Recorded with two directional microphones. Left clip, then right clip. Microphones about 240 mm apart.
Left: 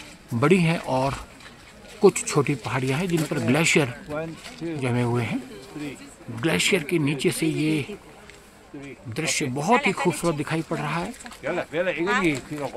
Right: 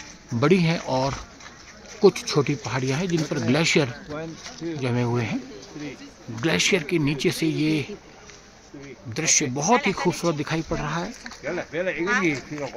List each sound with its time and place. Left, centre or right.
0.4 s speech: centre
6.4 s speech: centre
9.1 s speech: centre
11.4 s speech: left